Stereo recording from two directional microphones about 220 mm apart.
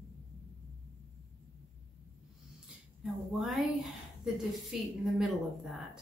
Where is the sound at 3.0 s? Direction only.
Centre (ahead or behind).